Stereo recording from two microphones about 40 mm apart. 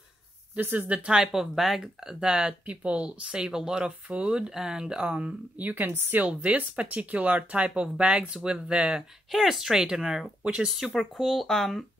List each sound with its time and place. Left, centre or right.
0.7 s speech: right
1.1 s speech: centre
2.6 s speech: right
5.6 s speech: right
5.9 s speech: right
6.1 s speech: right
9.3 s speech: centre
10.4 s speech: right
11.1 s speech: centre